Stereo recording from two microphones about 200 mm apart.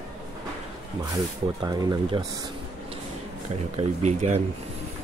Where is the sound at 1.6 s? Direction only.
20° right (ahead or behind).